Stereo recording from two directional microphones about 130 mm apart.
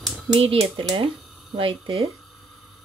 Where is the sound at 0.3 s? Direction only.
45° right (ahead or behind).